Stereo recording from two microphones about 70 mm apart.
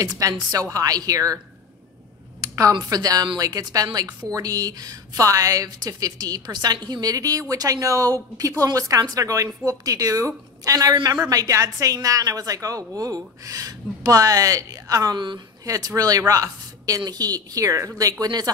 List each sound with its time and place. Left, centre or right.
0.0 s a woman's voice: right
2.4 s a sound: right
2.7 s a woman's voice: right
15.6 s a woman's voice: right
18.2 s speech: right